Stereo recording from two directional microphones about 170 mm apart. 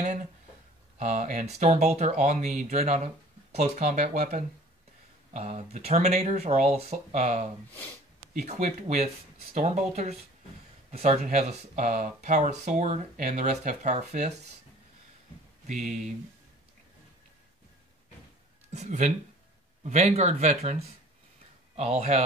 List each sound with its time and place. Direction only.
0.9 s speech: 45° right (ahead or behind)
15.6 s speech: 45° right (ahead or behind)
18.7 s speech: 40° right (ahead or behind)